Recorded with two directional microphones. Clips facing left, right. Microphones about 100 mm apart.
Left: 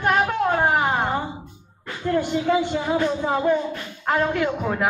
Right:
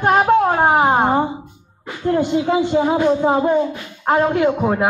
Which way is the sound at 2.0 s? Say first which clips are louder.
Right 4 dB; 25° right (ahead or behind).